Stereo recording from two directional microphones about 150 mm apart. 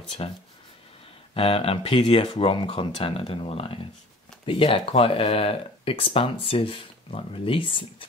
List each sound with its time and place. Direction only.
0.2 s speech: 35° left (ahead or behind)